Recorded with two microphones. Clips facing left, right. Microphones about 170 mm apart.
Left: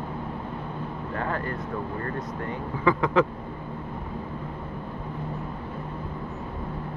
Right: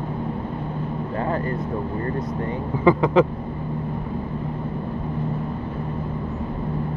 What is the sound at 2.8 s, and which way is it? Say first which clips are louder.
Speech: right 5 dB; 20° right (ahead or behind).